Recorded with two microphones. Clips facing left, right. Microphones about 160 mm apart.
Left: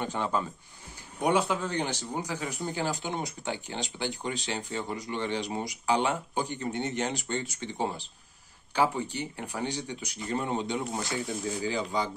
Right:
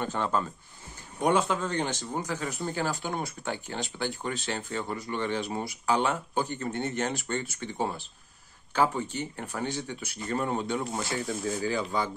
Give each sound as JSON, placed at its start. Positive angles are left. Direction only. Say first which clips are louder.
{"t": 0.0, "sound": "speech", "louder": "right 1 dB", "side_deg": 15}
{"t": 8.7, "sound": "speech", "louder": "right 1 dB", "side_deg": 15}